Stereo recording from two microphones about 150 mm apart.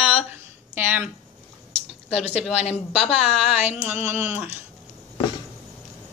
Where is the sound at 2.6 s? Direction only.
45° left (ahead or behind).